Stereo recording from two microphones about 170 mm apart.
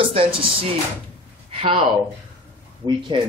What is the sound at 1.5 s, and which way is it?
Speech, 35° right (ahead or behind).